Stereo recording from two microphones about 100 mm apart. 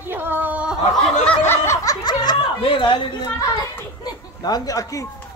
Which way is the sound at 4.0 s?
40° left (ahead or behind).